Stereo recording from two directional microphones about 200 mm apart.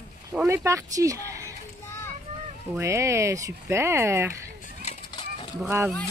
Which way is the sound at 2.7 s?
15° right (ahead or behind).